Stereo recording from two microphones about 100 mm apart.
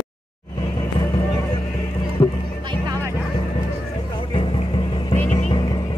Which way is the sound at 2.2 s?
40° left (ahead or behind).